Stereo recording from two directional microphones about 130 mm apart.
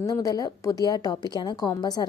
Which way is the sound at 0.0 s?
30° left (ahead or behind).